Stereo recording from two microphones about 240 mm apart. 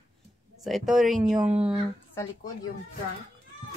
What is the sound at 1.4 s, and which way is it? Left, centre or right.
Speech, right.